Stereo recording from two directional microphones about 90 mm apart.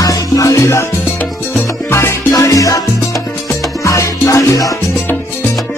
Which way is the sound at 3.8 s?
35° left (ahead or behind).